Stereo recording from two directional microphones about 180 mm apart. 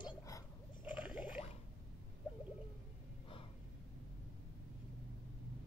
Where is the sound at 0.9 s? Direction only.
5° right (ahead or behind).